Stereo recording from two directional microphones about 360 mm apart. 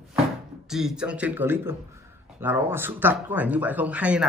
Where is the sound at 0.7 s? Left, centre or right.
Centre.